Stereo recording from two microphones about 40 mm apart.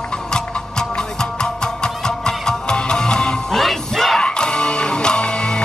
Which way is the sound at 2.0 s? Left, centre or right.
Centre.